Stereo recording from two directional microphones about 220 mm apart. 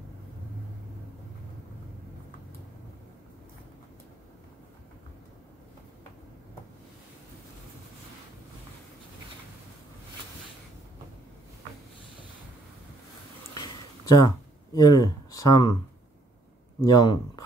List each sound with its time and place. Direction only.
13.6 s a sound: 15° left (ahead or behind)
14.8 s speech: 15° left (ahead or behind)
16.8 s speech: 20° left (ahead or behind)